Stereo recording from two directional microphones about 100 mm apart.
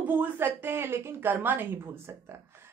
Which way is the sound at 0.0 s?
20° right (ahead or behind).